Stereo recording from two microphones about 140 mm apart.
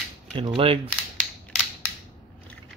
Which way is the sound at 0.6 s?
40° right (ahead or behind).